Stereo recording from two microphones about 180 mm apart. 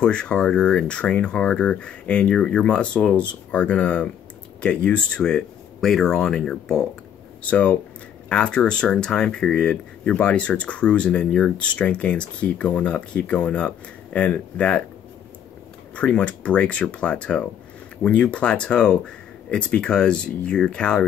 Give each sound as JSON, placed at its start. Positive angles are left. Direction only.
{"t": 0.0, "sound": "speech", "side_deg": 5}
{"t": 15.9, "sound": "speech", "side_deg": 5}